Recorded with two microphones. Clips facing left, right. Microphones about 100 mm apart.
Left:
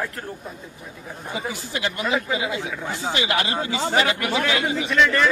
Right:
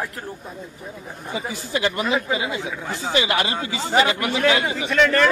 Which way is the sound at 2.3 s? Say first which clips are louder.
Right 1 dB; 25° right (ahead or behind).